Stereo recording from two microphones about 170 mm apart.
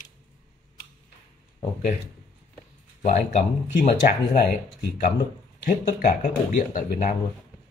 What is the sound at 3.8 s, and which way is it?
Speech, 50° left (ahead or behind).